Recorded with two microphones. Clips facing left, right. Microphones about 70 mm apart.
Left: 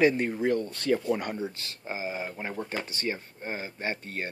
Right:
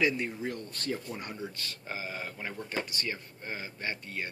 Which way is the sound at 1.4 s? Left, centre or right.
Left.